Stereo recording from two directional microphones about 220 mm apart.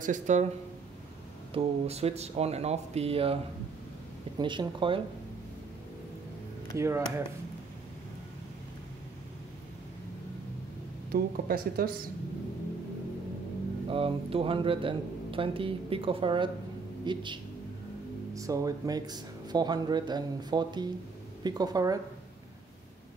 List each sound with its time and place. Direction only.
0.0 s speech: 35° right (ahead or behind)
1.5 s speech: 25° right (ahead or behind)
4.4 s speech: 20° right (ahead or behind)
6.8 s speech: 10° right (ahead or behind)
11.1 s speech: 45° right (ahead or behind)
13.8 s speech: 25° right (ahead or behind)